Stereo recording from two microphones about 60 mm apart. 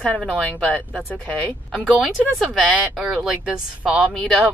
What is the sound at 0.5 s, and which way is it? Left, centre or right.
Speech, left.